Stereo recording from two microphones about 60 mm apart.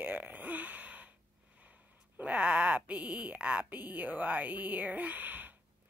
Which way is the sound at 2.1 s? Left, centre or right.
Right.